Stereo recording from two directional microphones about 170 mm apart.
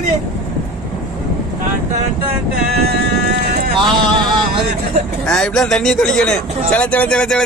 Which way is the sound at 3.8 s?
30° right (ahead or behind).